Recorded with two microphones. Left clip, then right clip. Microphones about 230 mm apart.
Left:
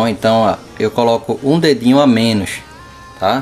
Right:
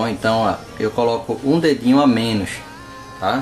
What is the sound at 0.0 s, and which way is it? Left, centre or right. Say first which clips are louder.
Speech: left 5 dB; left.